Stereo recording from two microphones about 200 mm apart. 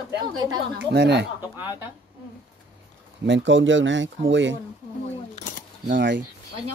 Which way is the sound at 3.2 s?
65° right (ahead or behind).